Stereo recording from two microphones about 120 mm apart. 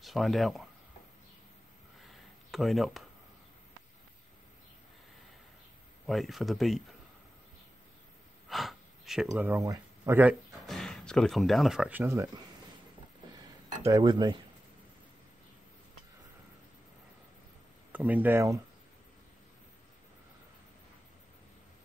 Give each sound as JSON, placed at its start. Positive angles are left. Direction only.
{"t": 0.0, "sound": "speech", "side_deg": 0}
{"t": 2.0, "sound": "a sound", "side_deg": 0}
{"t": 6.0, "sound": "speech", "side_deg": 0}
{"t": 8.5, "sound": "a sound", "side_deg": 0}
{"t": 9.6, "sound": "speech", "side_deg": -25}
{"t": 10.7, "sound": "speech", "side_deg": 5}
{"t": 11.9, "sound": "speech", "side_deg": -20}
{"t": 13.8, "sound": "speech", "side_deg": -35}
{"t": 17.9, "sound": "speech", "side_deg": -15}